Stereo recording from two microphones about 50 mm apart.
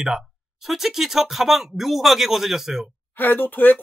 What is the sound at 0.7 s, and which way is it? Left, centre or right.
Speech, centre.